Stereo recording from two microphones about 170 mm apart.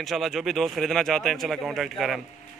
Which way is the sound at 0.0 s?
Centre (ahead or behind).